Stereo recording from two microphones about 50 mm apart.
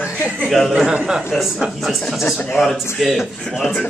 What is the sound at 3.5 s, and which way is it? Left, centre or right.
Speech, centre.